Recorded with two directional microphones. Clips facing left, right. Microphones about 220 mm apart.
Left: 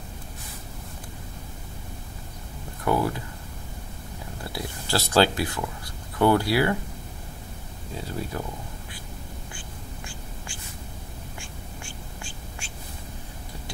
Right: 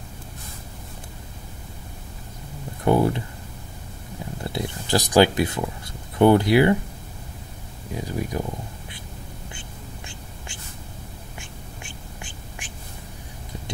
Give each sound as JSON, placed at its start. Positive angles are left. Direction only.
{"t": 2.8, "sound": "speech", "side_deg": -25}
{"t": 4.5, "sound": "speech", "side_deg": -20}
{"t": 7.9, "sound": "speech", "side_deg": -15}
{"t": 9.5, "sound": "whispering", "side_deg": -20}